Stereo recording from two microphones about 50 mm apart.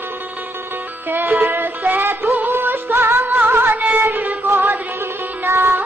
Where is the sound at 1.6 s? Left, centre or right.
Right.